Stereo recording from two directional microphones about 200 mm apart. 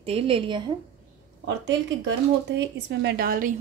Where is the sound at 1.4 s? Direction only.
65° right (ahead or behind).